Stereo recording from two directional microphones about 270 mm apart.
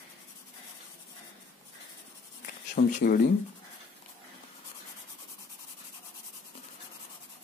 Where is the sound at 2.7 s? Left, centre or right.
Left.